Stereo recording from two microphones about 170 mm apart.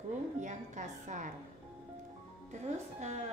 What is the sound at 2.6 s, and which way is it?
Speech, 40° right (ahead or behind).